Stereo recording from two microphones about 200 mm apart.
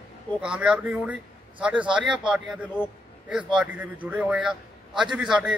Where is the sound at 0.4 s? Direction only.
5° right (ahead or behind).